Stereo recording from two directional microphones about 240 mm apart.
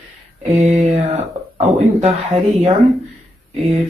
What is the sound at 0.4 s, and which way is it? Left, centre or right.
Speech, right.